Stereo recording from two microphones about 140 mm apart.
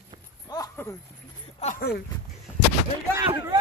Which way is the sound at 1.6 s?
50° left (ahead or behind).